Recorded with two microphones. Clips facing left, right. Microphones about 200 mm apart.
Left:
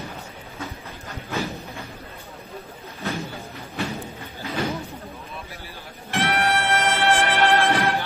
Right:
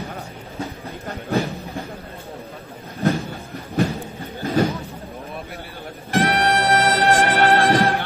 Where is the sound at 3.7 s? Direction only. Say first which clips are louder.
Right 8 dB; 50° right (ahead or behind).